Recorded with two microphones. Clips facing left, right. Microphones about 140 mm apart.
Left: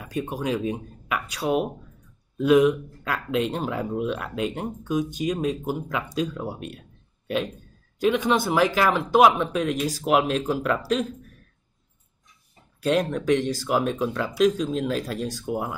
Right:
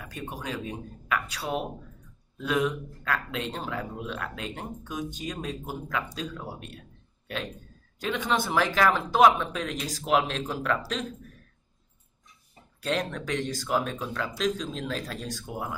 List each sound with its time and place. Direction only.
0.1 s speech: 15° left (ahead or behind)
8.0 s speech: 15° left (ahead or behind)
12.8 s speech: 10° left (ahead or behind)